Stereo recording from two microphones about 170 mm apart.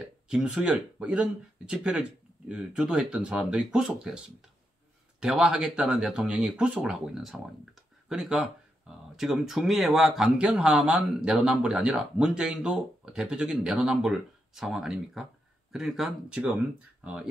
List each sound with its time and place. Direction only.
0.0 s speech: 5° right (ahead or behind)
5.2 s speech: 5° right (ahead or behind)